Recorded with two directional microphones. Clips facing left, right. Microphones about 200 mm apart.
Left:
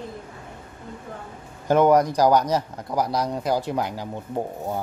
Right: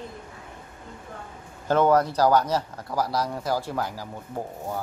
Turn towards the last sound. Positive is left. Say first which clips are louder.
# left 5 dB
turn(degrees=20)  # may be behind; listen again after turning